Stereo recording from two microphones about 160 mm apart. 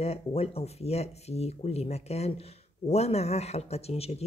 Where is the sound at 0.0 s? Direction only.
40° left (ahead or behind).